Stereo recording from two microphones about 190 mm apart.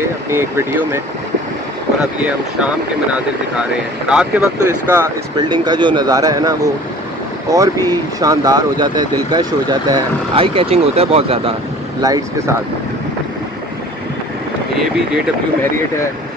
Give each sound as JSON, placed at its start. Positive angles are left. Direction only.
{"t": 0.3, "sound": "speech", "side_deg": -15}
{"t": 4.1, "sound": "speech", "side_deg": -5}
{"t": 5.5, "sound": "speech", "side_deg": -25}
{"t": 12.0, "sound": "speech", "side_deg": -20}